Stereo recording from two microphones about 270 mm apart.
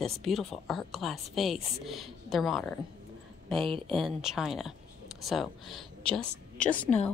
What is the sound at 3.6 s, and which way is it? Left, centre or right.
Speech, centre.